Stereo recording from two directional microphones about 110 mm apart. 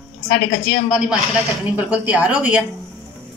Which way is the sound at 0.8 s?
10° right (ahead or behind).